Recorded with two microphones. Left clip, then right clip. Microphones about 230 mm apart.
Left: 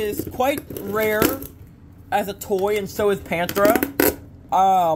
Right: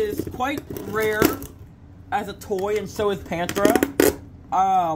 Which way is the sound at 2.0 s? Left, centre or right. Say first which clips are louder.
Left 3 dB; centre.